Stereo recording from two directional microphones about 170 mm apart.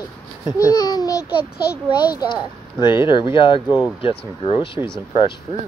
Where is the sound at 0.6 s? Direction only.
20° left (ahead or behind).